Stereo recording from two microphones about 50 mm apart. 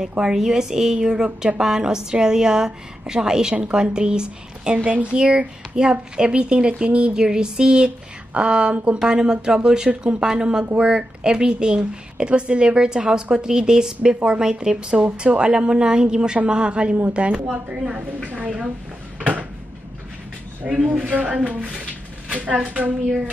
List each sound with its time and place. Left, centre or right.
0.2 s a woman's voice: centre; by 9.0 s right
9.0 s a woman's voice: centre
19.1 s a sound: right
20.6 s a woman's voice: centre
21.0 s a woman's voice: right